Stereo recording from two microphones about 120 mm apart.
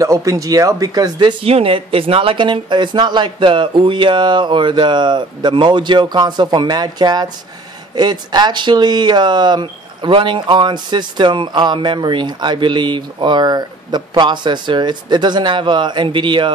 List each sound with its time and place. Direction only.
0.0 s speech: 25° right (ahead or behind)
1.4 s speech: 55° right (ahead or behind)